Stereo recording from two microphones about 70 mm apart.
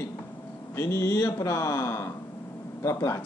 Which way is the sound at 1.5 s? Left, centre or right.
Left.